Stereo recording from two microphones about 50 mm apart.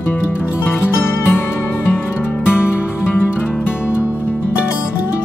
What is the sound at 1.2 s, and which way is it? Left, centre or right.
Music, left.